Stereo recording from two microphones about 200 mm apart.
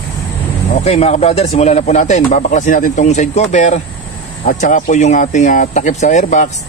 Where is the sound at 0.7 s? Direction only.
30° left (ahead or behind).